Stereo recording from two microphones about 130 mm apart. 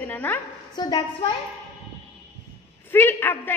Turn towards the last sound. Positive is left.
turn(degrees=15)  # may be behind; listen again after turning